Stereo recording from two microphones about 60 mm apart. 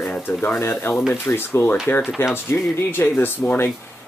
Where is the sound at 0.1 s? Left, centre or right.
Left.